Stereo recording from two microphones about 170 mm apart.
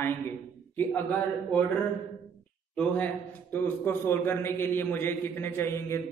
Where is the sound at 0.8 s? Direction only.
10° left (ahead or behind).